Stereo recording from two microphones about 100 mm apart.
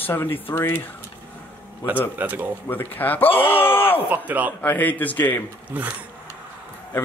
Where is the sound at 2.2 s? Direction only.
20° right (ahead or behind).